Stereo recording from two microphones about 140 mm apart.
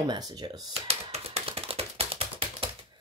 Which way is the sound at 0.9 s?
45° right (ahead or behind).